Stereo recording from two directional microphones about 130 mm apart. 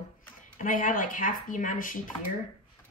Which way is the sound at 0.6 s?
90° left.